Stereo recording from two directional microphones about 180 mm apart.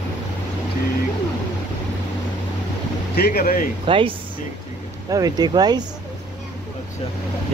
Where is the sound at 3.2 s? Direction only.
55° left (ahead or behind).